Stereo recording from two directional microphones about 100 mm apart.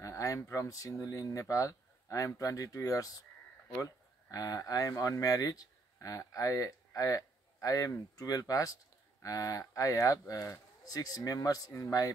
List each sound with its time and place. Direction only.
0.0 s speech: 30° left (ahead or behind)